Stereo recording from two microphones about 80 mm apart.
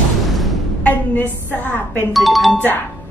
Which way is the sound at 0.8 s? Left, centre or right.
Left.